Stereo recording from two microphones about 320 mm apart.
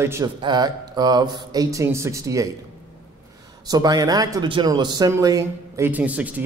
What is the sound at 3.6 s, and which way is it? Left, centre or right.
Speech, centre.